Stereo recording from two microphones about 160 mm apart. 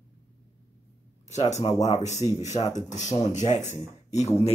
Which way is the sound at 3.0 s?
50° left (ahead or behind).